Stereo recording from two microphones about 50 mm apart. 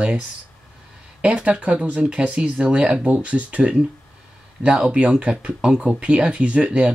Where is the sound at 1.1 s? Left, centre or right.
Right.